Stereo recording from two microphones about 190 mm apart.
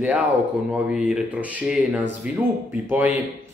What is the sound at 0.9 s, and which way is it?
Speech, 5° right (ahead or behind).